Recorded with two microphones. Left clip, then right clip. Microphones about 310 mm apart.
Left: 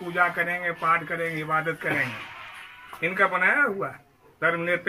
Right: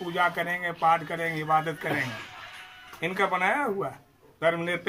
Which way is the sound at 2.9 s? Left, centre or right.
Right.